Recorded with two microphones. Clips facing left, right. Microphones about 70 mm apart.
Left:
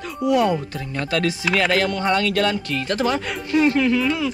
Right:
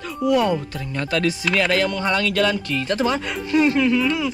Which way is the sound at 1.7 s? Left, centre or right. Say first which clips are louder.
Left 1 dB; left.